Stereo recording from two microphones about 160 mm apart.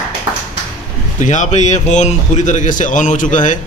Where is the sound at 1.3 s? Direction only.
45° left (ahead or behind).